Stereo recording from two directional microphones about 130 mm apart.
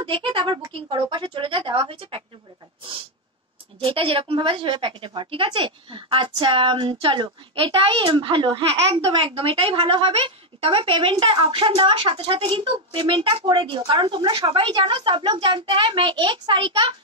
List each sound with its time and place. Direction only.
0.0 s a woman's voice: 40° right (ahead or behind)
3.8 s a woman's voice: 45° right (ahead or behind)